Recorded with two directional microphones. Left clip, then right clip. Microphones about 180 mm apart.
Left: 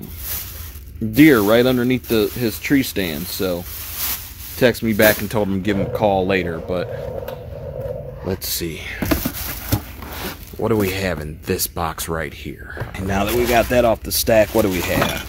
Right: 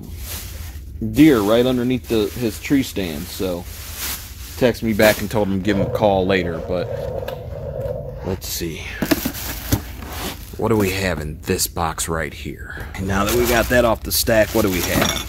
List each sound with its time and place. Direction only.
1.1 s speech: 30° left (ahead or behind)
8.3 s speech: 20° left (ahead or behind)
10.6 s speech: 5° left (ahead or behind)